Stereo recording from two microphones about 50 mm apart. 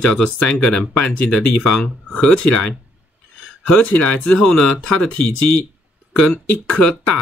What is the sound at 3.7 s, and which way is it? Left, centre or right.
Speech, left.